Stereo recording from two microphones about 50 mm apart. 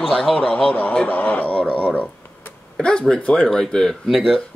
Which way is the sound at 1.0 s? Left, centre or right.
Left.